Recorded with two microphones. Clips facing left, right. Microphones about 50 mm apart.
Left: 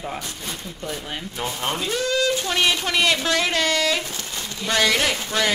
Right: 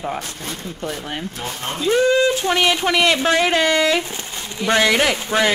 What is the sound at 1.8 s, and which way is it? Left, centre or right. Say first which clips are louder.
Speech: right 8 dB; right.